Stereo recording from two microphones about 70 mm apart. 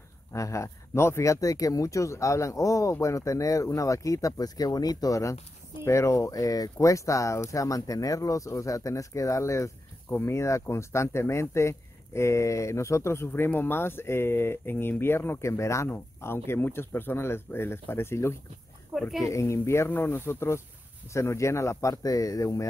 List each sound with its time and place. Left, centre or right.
0.3 s speech: left
10.0 s speech: left
13.3 s speech: left
18.9 s speech: centre
19.2 s speech: left